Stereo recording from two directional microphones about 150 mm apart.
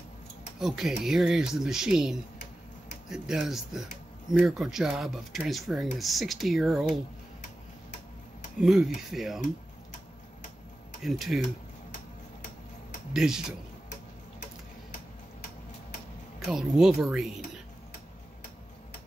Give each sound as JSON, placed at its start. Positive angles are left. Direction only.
{"t": 0.6, "sound": "speech", "side_deg": 0}
{"t": 8.5, "sound": "speech", "side_deg": 0}
{"t": 11.0, "sound": "speech", "side_deg": 0}
{"t": 13.1, "sound": "speech", "side_deg": -5}
{"t": 16.4, "sound": "speech", "side_deg": 0}